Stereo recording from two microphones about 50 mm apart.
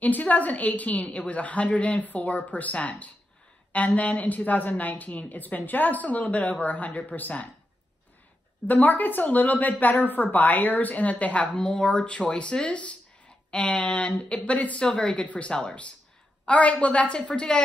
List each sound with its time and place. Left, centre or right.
0.0 s a woman's voice: left
8.6 s a woman's voice: left
11.5 s a woman's voice: centre